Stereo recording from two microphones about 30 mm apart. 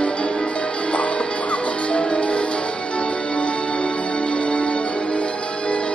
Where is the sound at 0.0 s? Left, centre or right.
Left.